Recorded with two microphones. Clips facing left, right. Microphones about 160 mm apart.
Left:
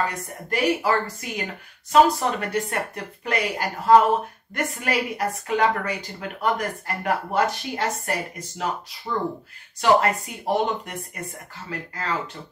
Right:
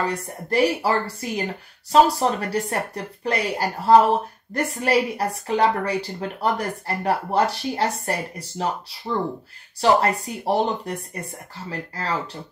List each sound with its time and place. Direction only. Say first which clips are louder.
0.1 s a woman's voice: right 5 dB; 35° right (ahead or behind)